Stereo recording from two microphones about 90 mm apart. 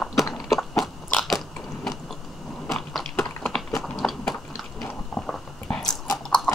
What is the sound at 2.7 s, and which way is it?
Biting, centre (ahead or behind).